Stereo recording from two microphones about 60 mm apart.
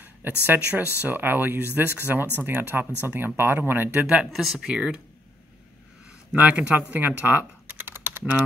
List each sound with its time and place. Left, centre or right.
0.0 s speech: right
4.3 s speech: centre
4.6 s speech: centre
6.3 s speech: right